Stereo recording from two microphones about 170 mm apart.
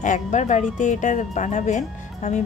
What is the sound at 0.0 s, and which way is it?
Speech, 45° left (ahead or behind).